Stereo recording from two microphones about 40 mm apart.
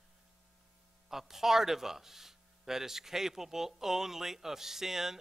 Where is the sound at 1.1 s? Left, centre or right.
Centre.